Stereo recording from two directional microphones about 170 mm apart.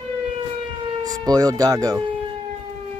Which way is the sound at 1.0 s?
20° right (ahead or behind).